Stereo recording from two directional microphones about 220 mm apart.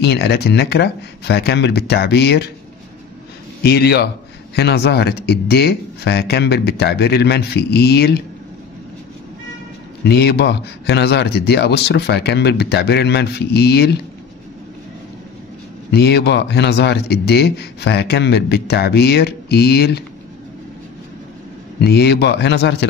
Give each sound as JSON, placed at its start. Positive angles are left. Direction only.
{"t": 0.0, "sound": "a man's voice", "side_deg": 50}
{"t": 3.6, "sound": "a man's voice", "side_deg": 45}
{"t": 10.0, "sound": "a man's voice", "side_deg": 50}
{"t": 15.9, "sound": "a man's voice", "side_deg": 50}
{"t": 21.8, "sound": "a man's voice", "side_deg": 45}